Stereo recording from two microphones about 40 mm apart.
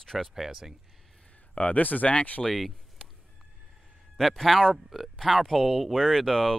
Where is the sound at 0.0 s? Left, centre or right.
Centre.